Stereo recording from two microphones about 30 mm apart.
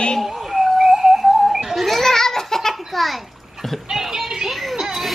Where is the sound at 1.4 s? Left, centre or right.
Centre.